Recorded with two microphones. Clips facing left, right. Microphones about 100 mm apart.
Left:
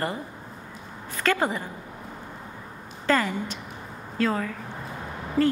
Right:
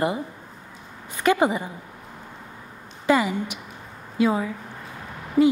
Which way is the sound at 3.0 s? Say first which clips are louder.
Right 3 dB; 15° right (ahead or behind).